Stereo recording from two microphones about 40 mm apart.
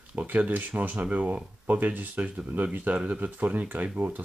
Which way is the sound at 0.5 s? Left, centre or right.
Right.